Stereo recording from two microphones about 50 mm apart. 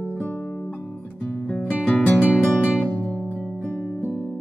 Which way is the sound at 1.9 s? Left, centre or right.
Left.